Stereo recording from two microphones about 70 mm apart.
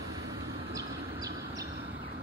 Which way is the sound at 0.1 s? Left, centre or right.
Right.